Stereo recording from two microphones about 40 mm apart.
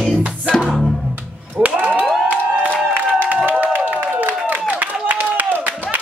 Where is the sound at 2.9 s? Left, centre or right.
Right.